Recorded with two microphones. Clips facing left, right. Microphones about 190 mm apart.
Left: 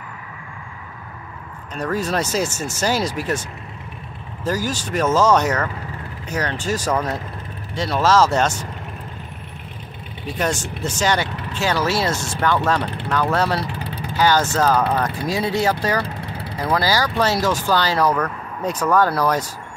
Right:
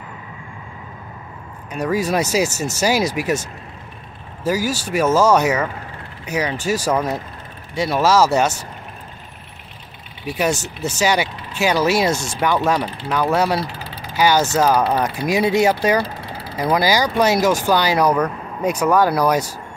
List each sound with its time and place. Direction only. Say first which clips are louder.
1.7 s speech: right 3 dB; 10° right (ahead or behind)
4.5 s speech: right 3 dB; 10° right (ahead or behind)
10.2 s speech: right 3 dB; 10° right (ahead or behind)
13.7 s vehicle: left 4 dB; 65° left (ahead or behind)
14.1 s speech: right 2 dB; 10° right (ahead or behind)